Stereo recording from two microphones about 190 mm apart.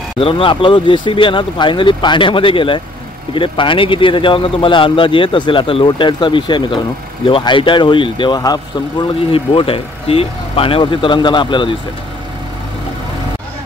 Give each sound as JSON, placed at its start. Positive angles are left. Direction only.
{"t": 0.2, "sound": "speech", "side_deg": 30}